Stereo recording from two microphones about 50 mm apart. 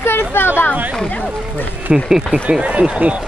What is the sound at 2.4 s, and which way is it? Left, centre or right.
Speech, right.